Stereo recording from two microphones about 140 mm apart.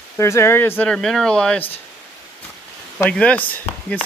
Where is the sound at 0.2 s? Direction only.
20° left (ahead or behind).